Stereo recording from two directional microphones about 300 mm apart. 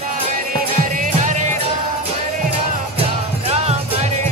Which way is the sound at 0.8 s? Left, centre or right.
Right.